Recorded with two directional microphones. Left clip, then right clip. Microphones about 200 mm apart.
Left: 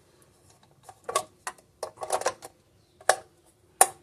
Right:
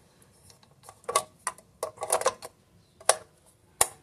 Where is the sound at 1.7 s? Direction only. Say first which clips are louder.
Right 1 dB; 20° right (ahead or behind).